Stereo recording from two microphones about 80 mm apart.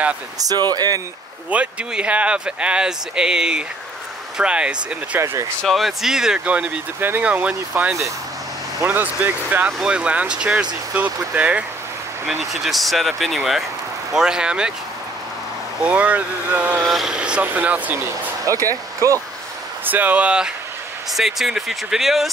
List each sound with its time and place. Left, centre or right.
0.5 s speech: right
1.5 s speech: centre
5.1 s speech: right
5.6 s speech: centre
7.0 s speech: right
9.7 s speech: centre
12.3 s speech: centre
15.8 s speech: centre
16.8 s speech: centre
17.1 s speech: centre
18.4 s speech: right
19.8 s speech: right; by 22.3 s centre